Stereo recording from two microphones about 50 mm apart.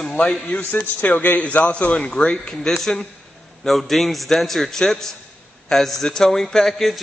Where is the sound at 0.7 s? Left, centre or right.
Left.